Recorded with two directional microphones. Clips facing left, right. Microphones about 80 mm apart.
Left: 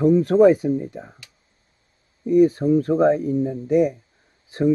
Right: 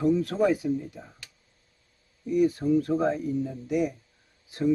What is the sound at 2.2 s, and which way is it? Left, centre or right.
Speech, left.